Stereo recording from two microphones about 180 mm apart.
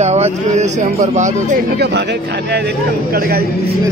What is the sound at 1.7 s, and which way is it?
A man's voice, 70° right (ahead or behind).